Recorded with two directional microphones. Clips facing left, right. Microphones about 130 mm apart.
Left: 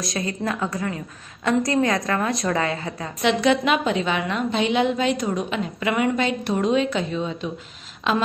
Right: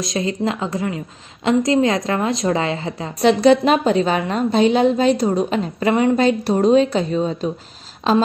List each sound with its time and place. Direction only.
0.0 s a woman's voice: 20° right (ahead or behind)